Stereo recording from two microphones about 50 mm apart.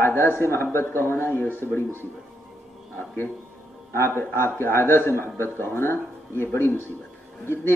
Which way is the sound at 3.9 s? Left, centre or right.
Left.